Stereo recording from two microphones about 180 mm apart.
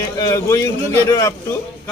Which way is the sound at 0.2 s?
20° left (ahead or behind).